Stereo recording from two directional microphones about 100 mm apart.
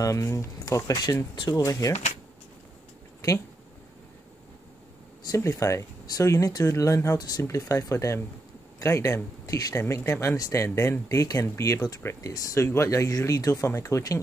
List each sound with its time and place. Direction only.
0.0 s speech: 35° left (ahead or behind)
1.3 s speech: 55° left (ahead or behind)
1.6 s speech: 35° left (ahead or behind)
5.3 s speech: 30° left (ahead or behind)
7.4 s speech: 30° left (ahead or behind)